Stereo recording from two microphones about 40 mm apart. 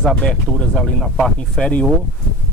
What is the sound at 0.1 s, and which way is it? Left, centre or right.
Speech, centre.